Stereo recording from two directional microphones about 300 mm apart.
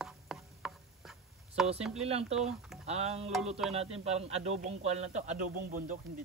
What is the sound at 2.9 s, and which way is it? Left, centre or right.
A man's voice, right.